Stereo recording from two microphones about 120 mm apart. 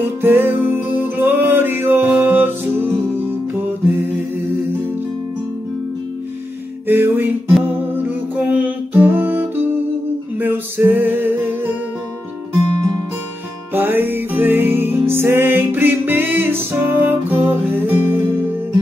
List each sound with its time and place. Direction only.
0.2 s music: 15° right (ahead or behind)
6.9 s music: 15° right (ahead or behind)
13.7 s music: 15° right (ahead or behind)